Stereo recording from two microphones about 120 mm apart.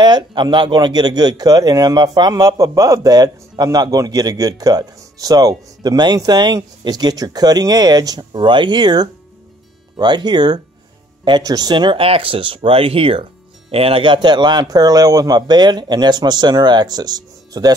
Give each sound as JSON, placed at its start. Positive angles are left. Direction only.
{"t": 0.0, "sound": "speech", "side_deg": -40}